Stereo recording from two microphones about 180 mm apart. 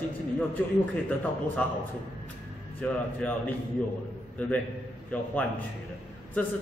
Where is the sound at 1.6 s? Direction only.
10° left (ahead or behind).